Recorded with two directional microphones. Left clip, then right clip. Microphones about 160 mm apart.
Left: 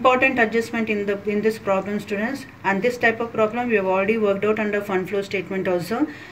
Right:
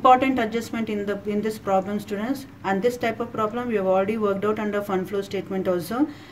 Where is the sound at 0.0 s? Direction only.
45° right (ahead or behind).